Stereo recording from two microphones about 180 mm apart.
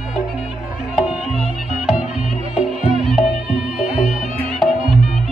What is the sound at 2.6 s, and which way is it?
Music, centre (ahead or behind).